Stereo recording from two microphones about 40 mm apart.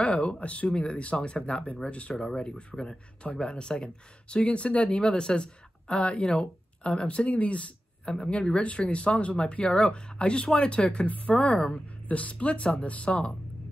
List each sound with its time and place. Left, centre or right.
0.0 s speech: left
7.2 s speech: left